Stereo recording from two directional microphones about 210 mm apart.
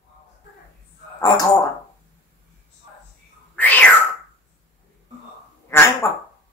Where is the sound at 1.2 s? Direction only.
15° left (ahead or behind).